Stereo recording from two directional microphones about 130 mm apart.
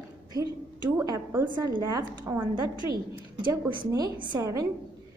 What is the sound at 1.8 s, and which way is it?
Speech, 20° right (ahead or behind).